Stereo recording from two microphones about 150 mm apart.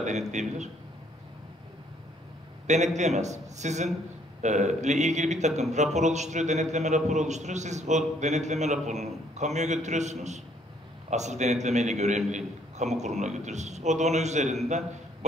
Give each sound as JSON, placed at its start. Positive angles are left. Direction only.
{"t": 0.3, "sound": "a man's voice", "side_deg": -50}
{"t": 2.6, "sound": "a man's voice", "side_deg": -50}